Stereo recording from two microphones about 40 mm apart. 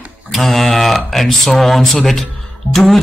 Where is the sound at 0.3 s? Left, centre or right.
Centre.